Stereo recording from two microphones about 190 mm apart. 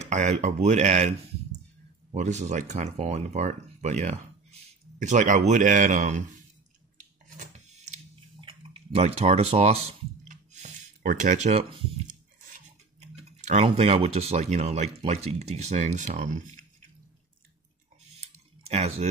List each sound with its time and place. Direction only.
0.0 s speech: 35° right (ahead or behind)
2.1 s speech: 35° right (ahead or behind)
7.3 s typing: 35° right (ahead or behind)
12.4 s speech: 40° right (ahead or behind)
18.1 s a sound: 35° right (ahead or behind)